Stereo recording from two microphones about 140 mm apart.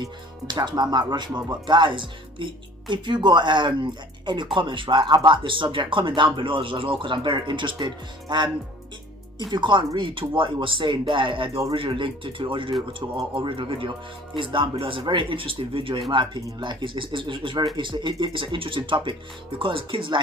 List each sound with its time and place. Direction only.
0.0 s speech: 30° right (ahead or behind)